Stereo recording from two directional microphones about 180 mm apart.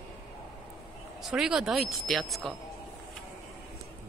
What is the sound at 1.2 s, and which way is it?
A woman's voice, 5° right (ahead or behind).